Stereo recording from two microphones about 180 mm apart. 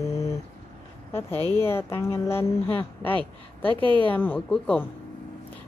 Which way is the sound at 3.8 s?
25° right (ahead or behind).